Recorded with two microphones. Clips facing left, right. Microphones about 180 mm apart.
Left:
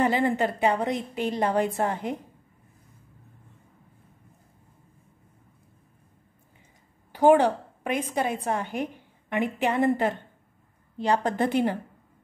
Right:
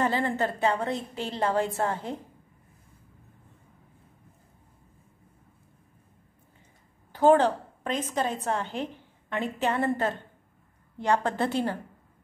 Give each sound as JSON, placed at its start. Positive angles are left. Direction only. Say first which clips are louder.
{"t": 0.0, "sound": "a woman's voice", "louder": "left 3 dB", "side_deg": 15}
{"t": 7.1, "sound": "a woman's voice", "louder": "left 2 dB", "side_deg": 15}
{"t": 11.2, "sound": "a woman's voice", "louder": "left 3 dB", "side_deg": 15}